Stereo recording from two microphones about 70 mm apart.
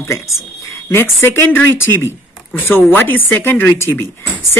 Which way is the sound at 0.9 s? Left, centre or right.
Left.